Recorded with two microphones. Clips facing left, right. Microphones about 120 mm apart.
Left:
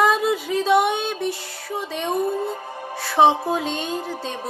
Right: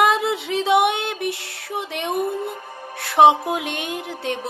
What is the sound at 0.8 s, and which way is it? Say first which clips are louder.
Music: even; 65° right (ahead or behind).